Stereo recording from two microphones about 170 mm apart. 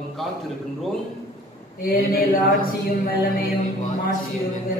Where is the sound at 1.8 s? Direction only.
60° left (ahead or behind).